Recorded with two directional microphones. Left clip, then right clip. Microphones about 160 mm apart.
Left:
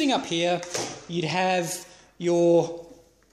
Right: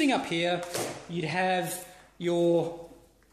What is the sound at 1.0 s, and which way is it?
Speech, 50° left (ahead or behind).